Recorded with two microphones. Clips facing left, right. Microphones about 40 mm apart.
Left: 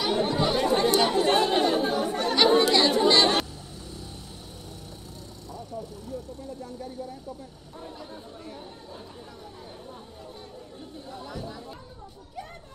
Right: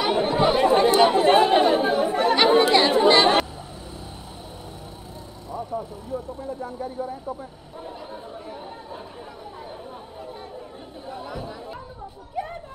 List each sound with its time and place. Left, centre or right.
0.0 s chatter: right
5.5 s speech: centre
7.8 s chatter: centre
11.1 s chatter: centre